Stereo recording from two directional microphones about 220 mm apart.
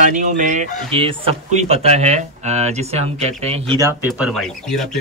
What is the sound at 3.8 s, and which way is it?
Speech, 10° right (ahead or behind).